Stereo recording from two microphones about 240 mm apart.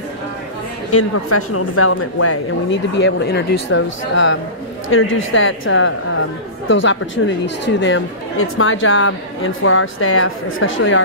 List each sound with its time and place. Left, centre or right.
0.9 s speech: left